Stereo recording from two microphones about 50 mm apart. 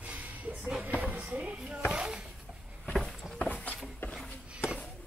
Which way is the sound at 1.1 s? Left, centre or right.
Right.